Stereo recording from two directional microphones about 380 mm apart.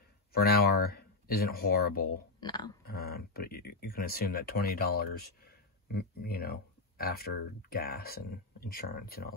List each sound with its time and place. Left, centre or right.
0.3 s speech: left
2.4 s speech: centre
2.8 s speech: left